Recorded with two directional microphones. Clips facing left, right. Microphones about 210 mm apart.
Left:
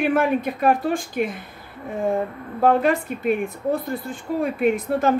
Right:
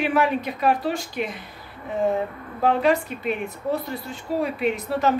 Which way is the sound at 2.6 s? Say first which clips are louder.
Left 2 dB; 50° left (ahead or behind).